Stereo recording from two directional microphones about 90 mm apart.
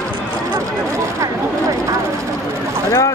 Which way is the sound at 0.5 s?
30° right (ahead or behind).